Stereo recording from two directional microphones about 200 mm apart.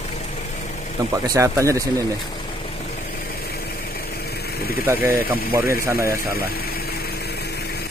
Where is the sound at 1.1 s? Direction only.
15° right (ahead or behind).